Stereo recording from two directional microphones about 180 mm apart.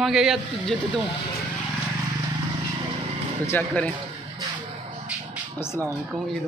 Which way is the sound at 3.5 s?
10° left (ahead or behind).